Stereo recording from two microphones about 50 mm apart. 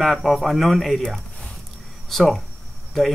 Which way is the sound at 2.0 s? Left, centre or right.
Centre.